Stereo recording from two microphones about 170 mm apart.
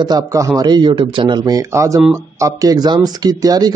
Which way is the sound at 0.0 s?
20° right (ahead or behind).